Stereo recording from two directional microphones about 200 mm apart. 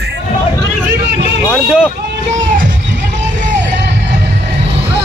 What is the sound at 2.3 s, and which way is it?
Music, 40° right (ahead or behind).